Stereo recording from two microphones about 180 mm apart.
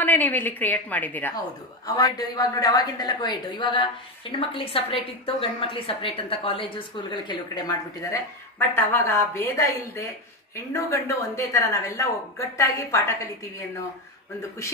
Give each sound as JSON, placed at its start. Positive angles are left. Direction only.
{"t": 0.0, "sound": "speech", "side_deg": 10}
{"t": 1.9, "sound": "a woman's voice", "side_deg": 20}